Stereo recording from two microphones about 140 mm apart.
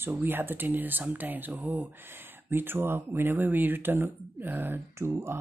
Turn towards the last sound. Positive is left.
turn(degrees=-20)  # may be behind; listen again after turning